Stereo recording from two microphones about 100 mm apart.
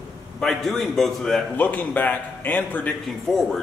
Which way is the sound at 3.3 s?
5° left (ahead or behind).